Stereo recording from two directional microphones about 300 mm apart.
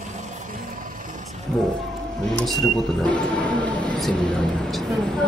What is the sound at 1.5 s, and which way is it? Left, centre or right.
Speech, centre.